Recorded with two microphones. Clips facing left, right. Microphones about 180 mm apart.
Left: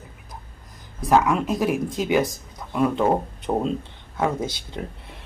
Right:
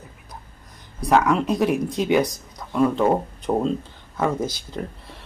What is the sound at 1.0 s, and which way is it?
Speech, centre (ahead or behind).